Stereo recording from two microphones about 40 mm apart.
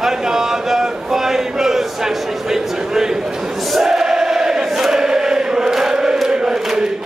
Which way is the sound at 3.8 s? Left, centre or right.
Centre.